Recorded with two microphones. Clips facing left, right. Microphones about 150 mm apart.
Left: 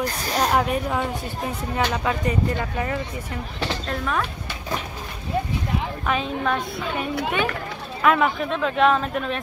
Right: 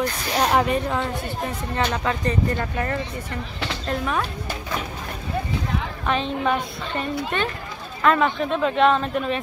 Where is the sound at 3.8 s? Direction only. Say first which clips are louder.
Right 4 dB; 5° right (ahead or behind).